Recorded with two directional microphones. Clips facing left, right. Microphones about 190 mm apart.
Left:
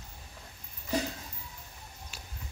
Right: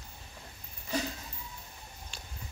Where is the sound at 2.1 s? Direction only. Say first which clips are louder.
Even; 5° left (ahead or behind).